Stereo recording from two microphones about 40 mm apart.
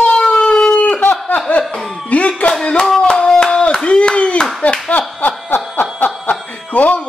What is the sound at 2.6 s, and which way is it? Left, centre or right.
Hands, left.